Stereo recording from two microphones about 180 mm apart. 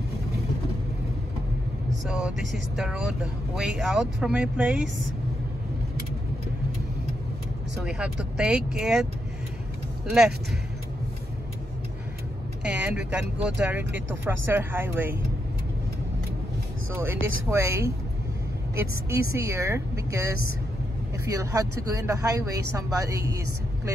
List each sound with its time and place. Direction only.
2.0 s speech: 5° right (ahead or behind)
7.7 s speech: 5° right (ahead or behind)
12.6 s speech: 5° right (ahead or behind)
16.9 s speech: 15° right (ahead or behind)